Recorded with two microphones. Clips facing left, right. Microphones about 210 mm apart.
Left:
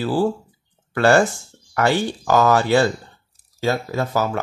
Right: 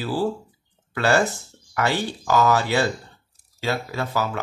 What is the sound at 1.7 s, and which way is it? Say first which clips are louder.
Speech: left 5 dB; 50° left (ahead or behind).